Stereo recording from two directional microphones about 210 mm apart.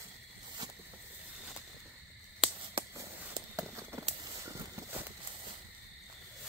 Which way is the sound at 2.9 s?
15° right (ahead or behind).